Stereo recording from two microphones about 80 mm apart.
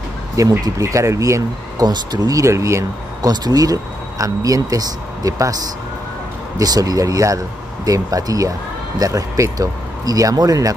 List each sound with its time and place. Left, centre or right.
0.4 s speech: right
1.9 s speech: right
3.2 s speech: right
6.6 s speech: right